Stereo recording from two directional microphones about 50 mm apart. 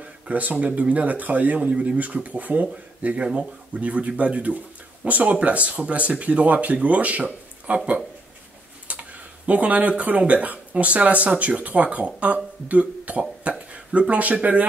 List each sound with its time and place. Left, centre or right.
0.0 s a man's voice: right
3.2 s speech: right
8.9 s a sound: right
9.5 s speech: right